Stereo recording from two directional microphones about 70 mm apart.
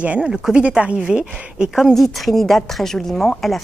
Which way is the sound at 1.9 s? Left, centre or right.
Centre.